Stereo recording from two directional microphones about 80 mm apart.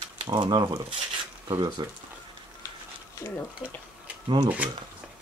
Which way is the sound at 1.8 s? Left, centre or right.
Right.